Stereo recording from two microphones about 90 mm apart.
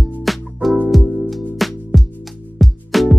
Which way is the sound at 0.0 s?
Centre (ahead or behind).